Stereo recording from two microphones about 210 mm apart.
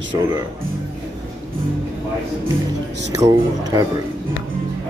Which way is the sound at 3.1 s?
15° right (ahead or behind).